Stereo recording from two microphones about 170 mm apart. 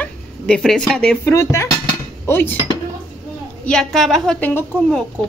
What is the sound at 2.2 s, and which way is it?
Dishes, 15° left (ahead or behind).